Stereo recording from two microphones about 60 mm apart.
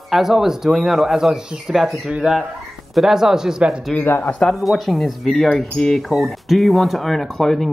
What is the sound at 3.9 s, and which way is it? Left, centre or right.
Speech, centre.